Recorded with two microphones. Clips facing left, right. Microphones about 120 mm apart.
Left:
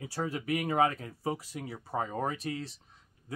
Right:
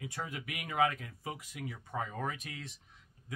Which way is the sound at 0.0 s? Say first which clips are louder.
Left 7 dB; 35° left (ahead or behind).